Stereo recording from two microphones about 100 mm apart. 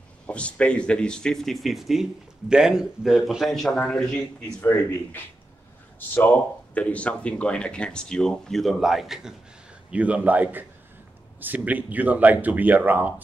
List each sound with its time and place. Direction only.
0.3 s a man's voice: 10° left (ahead or behind)
4.6 s speech: 20° left (ahead or behind); by 13.1 s 15° right (ahead or behind)